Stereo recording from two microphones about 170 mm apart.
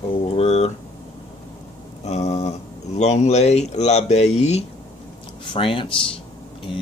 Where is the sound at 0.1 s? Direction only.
35° left (ahead or behind).